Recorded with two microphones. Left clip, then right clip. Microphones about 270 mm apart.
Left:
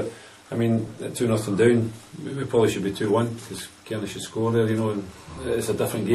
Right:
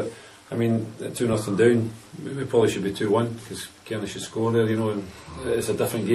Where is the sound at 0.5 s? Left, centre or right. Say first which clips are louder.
Even; centre.